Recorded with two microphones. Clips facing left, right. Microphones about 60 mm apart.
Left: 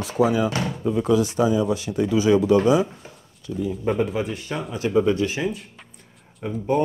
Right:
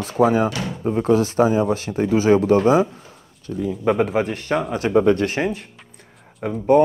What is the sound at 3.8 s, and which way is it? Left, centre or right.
Speech, right.